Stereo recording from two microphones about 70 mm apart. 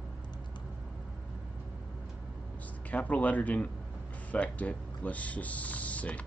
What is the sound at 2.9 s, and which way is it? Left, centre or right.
Speech, left.